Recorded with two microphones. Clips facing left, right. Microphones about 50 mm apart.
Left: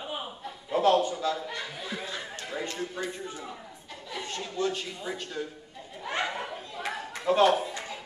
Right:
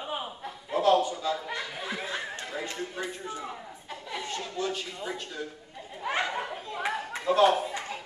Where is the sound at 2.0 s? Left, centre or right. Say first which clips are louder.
Right 3 dB; right.